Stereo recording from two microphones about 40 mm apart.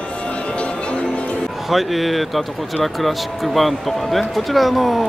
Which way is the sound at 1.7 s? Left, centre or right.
Centre.